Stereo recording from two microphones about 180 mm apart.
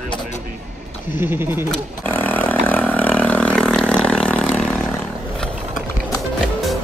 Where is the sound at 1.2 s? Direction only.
15° right (ahead or behind).